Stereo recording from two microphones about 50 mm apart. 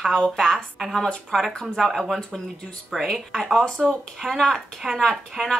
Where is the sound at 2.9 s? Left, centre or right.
Centre.